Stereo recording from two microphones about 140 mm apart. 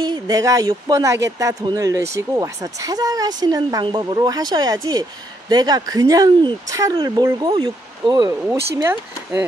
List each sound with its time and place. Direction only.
0.0 s speech: 30° right (ahead or behind)
8.8 s speech: 15° right (ahead or behind)